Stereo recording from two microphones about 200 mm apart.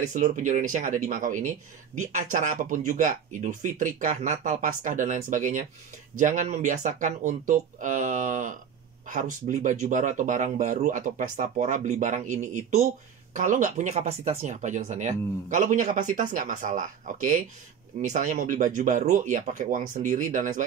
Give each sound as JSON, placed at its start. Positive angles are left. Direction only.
{"t": 0.1, "sound": "speech", "side_deg": -40}